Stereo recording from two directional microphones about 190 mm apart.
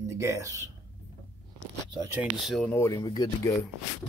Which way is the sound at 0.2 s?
15° right (ahead or behind).